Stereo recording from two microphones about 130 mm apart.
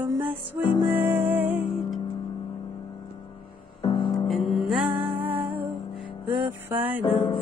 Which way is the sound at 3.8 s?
40° left (ahead or behind).